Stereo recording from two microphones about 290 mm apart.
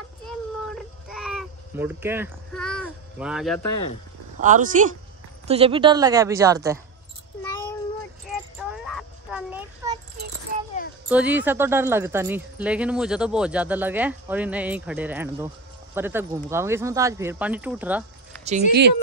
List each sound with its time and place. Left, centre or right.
0.3 s a sound: centre
3.7 s speech: left
4.4 s a woman's voice: right; by 6.8 s centre
8.3 s a sound: centre
10.5 s keys jangling: right
11.1 s speech: centre
18.7 s speech: right